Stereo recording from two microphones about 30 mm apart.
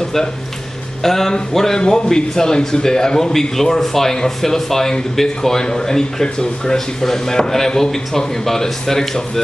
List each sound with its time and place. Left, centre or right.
1.0 s speech: centre